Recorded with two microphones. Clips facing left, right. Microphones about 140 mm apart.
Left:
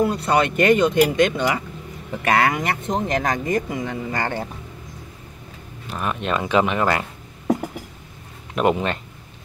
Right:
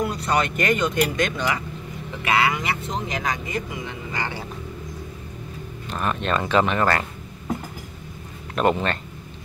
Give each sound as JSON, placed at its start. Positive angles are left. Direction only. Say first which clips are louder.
{"t": 0.0, "sound": "speech", "louder": "left 4 dB", "side_deg": 30}
{"t": 2.2, "sound": "speech", "louder": "left 3 dB", "side_deg": 45}
{"t": 5.9, "sound": "speech", "louder": "even", "side_deg": 10}
{"t": 8.5, "sound": "speech", "louder": "left 1 dB", "side_deg": 10}